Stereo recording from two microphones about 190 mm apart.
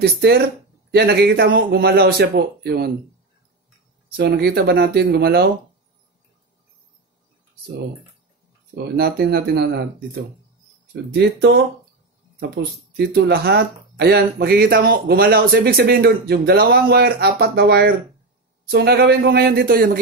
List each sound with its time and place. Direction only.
0.0 s speech: 55° right (ahead or behind)
4.2 s speech: 60° right (ahead or behind)
8.9 s speech: 55° right (ahead or behind)
10.9 s speech: 65° right (ahead or behind)